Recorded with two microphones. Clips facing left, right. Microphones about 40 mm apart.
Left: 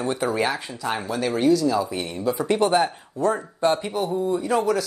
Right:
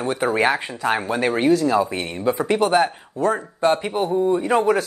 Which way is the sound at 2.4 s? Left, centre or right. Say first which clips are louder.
Right 1 dB; centre.